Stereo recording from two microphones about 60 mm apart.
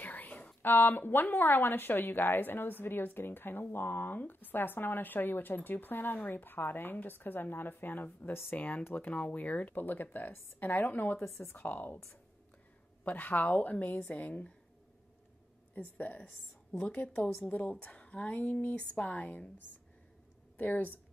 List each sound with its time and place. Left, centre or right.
0.0 s whispering: left
0.6 s a woman's voice: left
13.0 s speech: left
15.7 s speech: left
20.5 s a woman's voice: left